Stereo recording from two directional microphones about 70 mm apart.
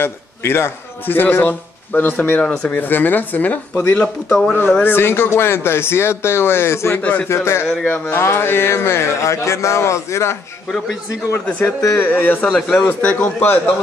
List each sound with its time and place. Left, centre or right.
0.0 s a man's voice: left
2.4 s speech: centre
4.8 s speech: left
7.0 s speech: centre
7.2 s speech: left
11.3 s speech: left
12.1 s speech: left
12.5 s speech: centre
13.0 s speech: left